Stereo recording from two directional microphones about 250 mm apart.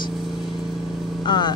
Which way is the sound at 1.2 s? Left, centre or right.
Centre.